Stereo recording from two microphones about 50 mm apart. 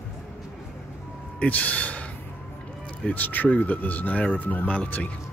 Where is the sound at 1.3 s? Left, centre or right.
Left.